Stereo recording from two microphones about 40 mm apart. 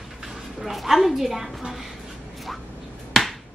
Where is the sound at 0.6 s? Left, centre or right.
Centre.